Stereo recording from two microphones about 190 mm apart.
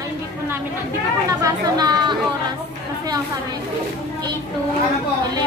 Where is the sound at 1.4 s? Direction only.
20° right (ahead or behind).